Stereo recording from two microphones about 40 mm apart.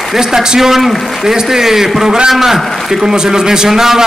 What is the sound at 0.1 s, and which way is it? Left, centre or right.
A man's voice, centre.